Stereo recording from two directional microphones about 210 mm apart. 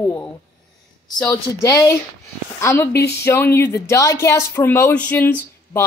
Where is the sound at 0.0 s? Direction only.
10° left (ahead or behind).